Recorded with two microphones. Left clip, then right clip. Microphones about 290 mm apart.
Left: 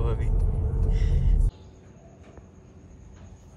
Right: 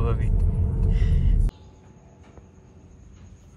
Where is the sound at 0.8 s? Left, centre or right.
Left.